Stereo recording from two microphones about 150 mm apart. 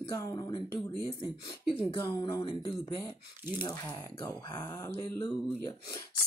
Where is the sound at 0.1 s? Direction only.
20° left (ahead or behind).